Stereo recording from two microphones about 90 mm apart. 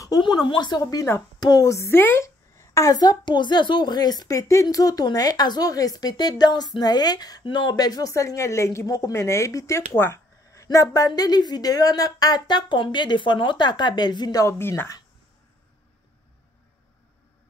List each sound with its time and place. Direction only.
0.2 s speech: 60° left (ahead or behind)
1.4 s speech: 45° left (ahead or behind)
14.5 s speech: 25° left (ahead or behind)